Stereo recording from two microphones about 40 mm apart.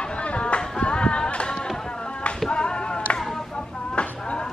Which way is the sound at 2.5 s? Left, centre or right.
Left.